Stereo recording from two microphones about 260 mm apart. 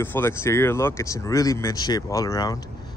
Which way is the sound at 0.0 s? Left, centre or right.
Centre.